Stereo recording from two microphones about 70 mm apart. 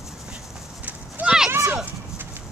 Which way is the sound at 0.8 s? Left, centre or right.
Right.